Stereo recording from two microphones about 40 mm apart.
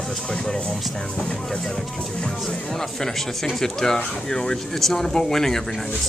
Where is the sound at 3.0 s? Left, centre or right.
Centre.